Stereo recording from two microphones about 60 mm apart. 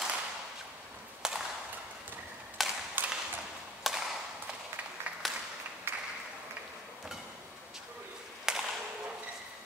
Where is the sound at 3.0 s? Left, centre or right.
Right.